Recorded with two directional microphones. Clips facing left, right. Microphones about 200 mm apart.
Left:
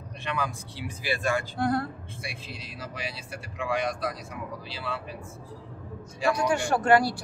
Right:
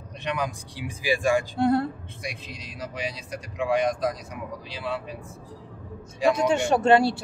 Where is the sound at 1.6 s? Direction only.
25° right (ahead or behind).